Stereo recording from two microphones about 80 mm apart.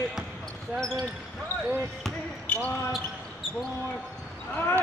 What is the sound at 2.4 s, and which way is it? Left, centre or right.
Basketball bounce, centre.